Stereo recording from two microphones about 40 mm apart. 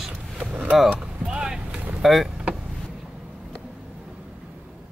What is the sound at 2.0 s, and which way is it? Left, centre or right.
Speech, centre.